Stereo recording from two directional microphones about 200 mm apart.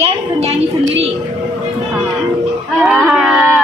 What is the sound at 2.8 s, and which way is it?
Speech, centre (ahead or behind).